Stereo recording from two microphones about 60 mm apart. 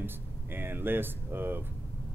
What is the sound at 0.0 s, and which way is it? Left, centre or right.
Speech, right.